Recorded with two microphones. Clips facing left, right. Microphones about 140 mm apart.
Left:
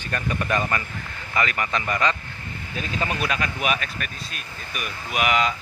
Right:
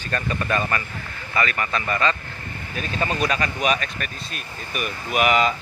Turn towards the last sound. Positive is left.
turn(degrees=0)  # may be behind; listen again after turning